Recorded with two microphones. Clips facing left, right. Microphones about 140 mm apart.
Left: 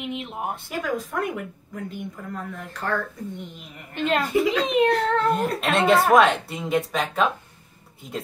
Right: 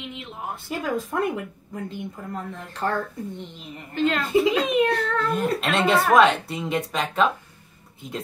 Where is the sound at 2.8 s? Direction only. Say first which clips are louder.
Right 2 dB; 30° right (ahead or behind).